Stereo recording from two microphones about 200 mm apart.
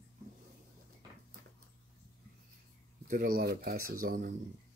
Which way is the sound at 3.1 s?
45° right (ahead or behind).